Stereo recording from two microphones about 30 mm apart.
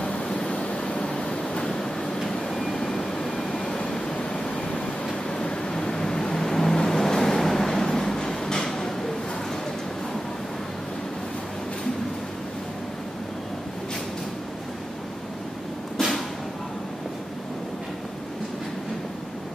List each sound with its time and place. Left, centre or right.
0.0 s vehicle: left
2.2 s vehicle: centre
2.9 s vehicle: left
5.4 s a sound: left
5.9 s vehicle: left
8.6 s a sound: centre